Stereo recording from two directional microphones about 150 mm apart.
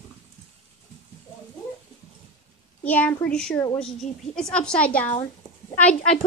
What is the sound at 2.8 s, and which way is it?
A woman's voice, 10° left (ahead or behind).